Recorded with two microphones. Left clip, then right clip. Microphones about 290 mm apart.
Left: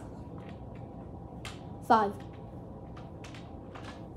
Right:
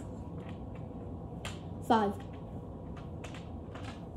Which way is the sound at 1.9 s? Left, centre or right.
Centre.